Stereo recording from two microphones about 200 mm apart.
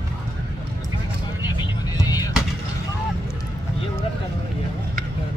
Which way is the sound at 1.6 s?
20° left (ahead or behind).